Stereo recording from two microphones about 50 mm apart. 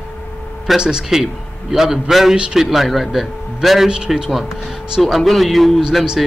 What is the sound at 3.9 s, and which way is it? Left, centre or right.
A man's voice, centre.